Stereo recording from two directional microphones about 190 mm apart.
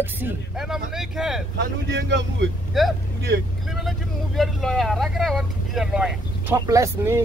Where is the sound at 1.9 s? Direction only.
70° right (ahead or behind).